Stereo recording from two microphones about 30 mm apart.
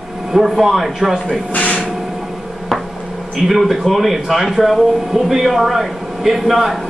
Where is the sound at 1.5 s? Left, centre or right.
Left.